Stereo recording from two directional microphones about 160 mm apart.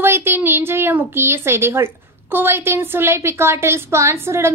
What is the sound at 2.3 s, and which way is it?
A woman's voice, 15° right (ahead or behind).